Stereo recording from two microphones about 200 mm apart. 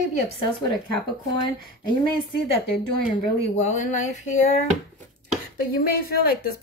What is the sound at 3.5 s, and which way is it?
A woman's voice, 35° left (ahead or behind).